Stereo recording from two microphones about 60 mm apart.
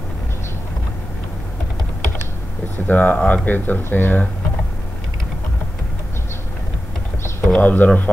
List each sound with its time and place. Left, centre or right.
2.9 s speech: left
7.5 s speech: left